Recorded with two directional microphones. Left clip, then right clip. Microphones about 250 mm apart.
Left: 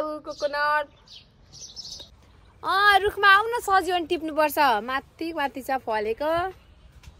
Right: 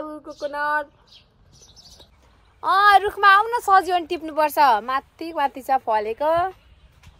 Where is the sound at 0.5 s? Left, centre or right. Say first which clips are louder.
Right 1 dB; centre.